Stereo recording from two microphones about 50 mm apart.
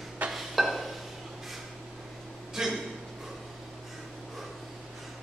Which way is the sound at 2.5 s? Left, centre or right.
Centre.